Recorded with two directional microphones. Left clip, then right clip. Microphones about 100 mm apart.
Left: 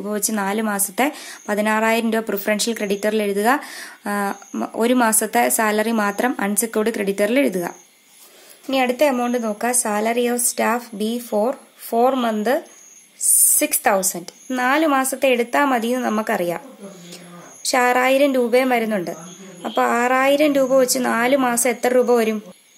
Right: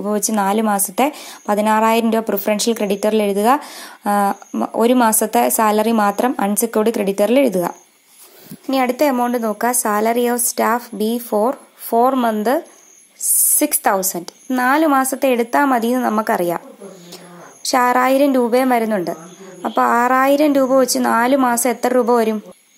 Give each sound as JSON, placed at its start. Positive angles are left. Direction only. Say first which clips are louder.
{"t": 0.0, "sound": "a woman's voice", "louder": "right 5 dB", "side_deg": -40}
{"t": 11.9, "sound": "a woman's voice", "louder": "right 3 dB", "side_deg": -25}
{"t": 13.4, "sound": "a woman's voice", "louder": "right 2 dB", "side_deg": -40}
{"t": 17.6, "sound": "a woman's voice", "louder": "right 2 dB", "side_deg": -35}